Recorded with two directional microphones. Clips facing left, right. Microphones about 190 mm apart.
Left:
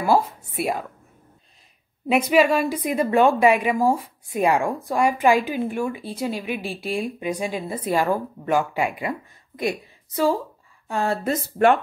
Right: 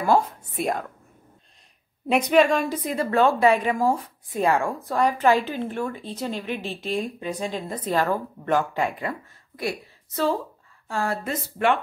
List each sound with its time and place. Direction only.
0.0 s a woman's voice: 5° left (ahead or behind)
2.0 s a woman's voice: 5° left (ahead or behind); by 11.1 s 20° left (ahead or behind)
11.2 s speech: 40° left (ahead or behind)